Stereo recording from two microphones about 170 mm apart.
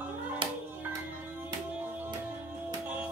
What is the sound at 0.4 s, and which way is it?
Music, 30° right (ahead or behind).